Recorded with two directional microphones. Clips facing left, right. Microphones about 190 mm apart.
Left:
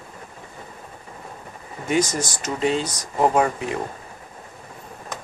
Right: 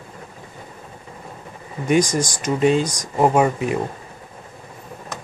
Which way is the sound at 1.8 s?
15° right (ahead or behind).